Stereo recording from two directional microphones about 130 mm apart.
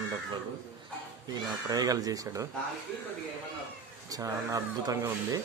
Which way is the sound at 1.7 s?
30° right (ahead or behind).